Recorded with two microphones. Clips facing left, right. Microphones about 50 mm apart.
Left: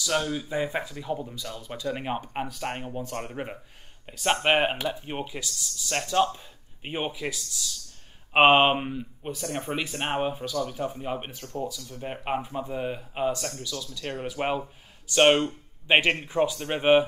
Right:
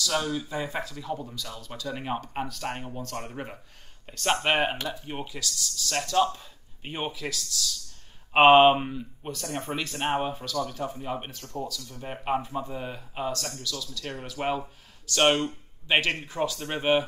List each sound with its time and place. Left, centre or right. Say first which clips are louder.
0.0 s speech: left 1 dB; centre